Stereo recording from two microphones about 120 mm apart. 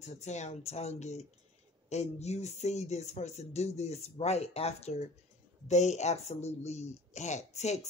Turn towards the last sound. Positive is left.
turn(degrees=70)  # may be behind; listen again after turning